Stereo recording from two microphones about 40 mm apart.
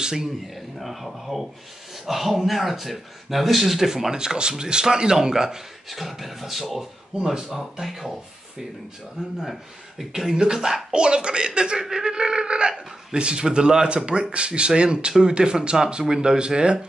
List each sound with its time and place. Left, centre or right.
0.0 s speech: centre
0.7 s speech: centre
9.4 s speech: centre